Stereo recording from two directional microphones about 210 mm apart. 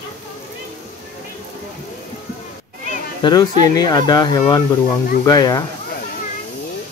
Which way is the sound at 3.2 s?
20° left (ahead or behind).